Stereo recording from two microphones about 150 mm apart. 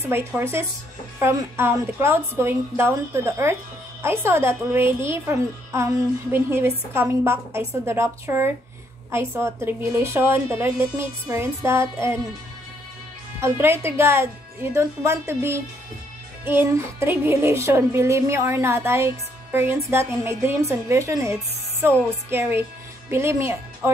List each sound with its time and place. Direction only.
0.1 s speech: 15° right (ahead or behind)
13.4 s a woman's voice: 15° right (ahead or behind)